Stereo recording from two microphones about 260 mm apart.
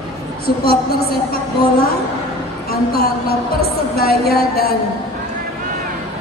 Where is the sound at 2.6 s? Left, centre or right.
Left.